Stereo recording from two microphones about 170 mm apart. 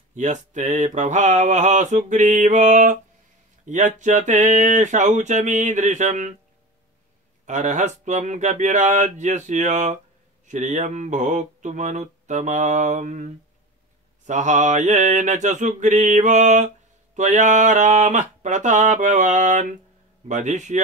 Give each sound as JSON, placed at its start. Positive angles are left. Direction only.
{"t": 0.1, "sound": "mantra", "side_deg": -45}
{"t": 7.4, "sound": "mantra", "side_deg": -45}